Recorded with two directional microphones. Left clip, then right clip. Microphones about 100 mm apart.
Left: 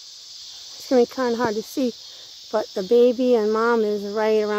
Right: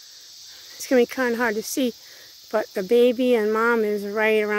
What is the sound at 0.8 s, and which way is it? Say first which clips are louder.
Speech: left 1 dB; 15° right (ahead or behind).